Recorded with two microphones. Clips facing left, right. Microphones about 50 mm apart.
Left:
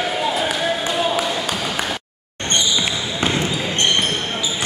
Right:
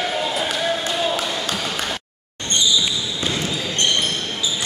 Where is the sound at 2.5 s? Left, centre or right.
Left.